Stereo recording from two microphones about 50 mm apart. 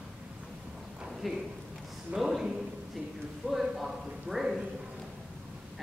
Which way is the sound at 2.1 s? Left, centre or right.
Centre.